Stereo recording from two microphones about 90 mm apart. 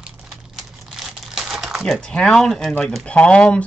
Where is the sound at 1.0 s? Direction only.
5° right (ahead or behind); by 3.7 s 10° left (ahead or behind).